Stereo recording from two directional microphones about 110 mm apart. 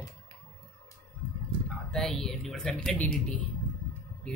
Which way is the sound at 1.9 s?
5° left (ahead or behind).